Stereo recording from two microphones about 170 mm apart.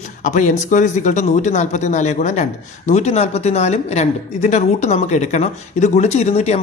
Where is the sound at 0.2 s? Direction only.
50° left (ahead or behind).